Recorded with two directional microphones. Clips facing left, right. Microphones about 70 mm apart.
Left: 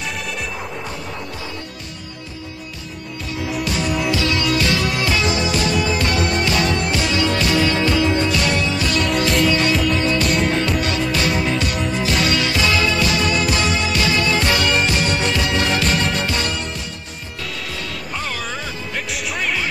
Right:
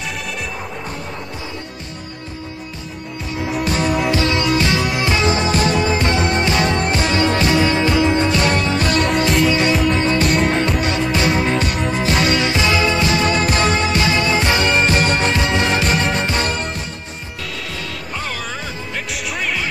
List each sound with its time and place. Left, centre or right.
3.4 s music: right
9.3 s music: centre
9.8 s music: right
10.2 s music: right
10.5 s music: right
14.0 s music: right
17.6 s music: centre